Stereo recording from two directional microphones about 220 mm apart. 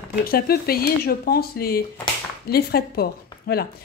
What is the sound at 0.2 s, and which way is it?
A woman's voice, 45° left (ahead or behind).